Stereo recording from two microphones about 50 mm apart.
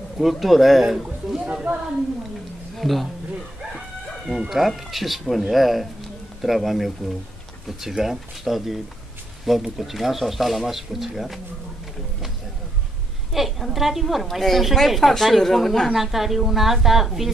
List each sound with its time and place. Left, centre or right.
0.2 s speech: centre
1.4 s speech: right
2.8 s speech: centre
4.3 s speech: centre
7.9 s speech: centre
13.3 s speech: centre